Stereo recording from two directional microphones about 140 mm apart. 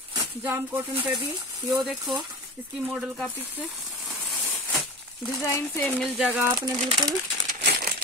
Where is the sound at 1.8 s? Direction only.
Centre (ahead or behind).